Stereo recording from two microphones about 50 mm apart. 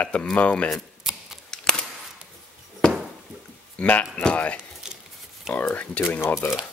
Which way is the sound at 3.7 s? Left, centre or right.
Left.